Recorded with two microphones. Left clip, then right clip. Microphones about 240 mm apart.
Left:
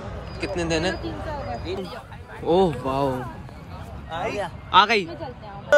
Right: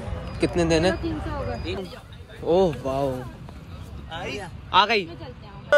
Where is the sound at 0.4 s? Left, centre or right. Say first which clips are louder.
Right 4 dB; centre.